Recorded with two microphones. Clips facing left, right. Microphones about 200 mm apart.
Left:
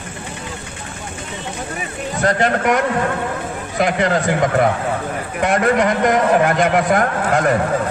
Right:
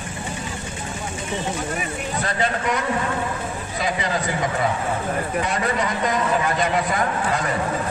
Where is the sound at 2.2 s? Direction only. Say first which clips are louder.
Left 9 dB; 60° left (ahead or behind).